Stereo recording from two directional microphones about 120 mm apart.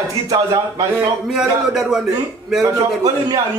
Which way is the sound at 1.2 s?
5° right (ahead or behind).